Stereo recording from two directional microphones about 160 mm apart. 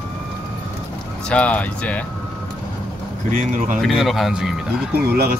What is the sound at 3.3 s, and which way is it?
Speech, 55° right (ahead or behind).